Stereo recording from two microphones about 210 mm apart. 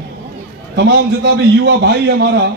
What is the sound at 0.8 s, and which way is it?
A man's voice, 55° right (ahead or behind).